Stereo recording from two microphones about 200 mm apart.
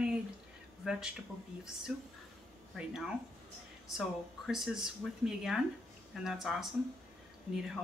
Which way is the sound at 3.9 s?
Centre (ahead or behind).